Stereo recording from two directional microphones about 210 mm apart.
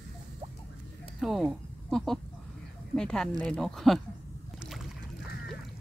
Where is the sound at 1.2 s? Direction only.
Centre (ahead or behind).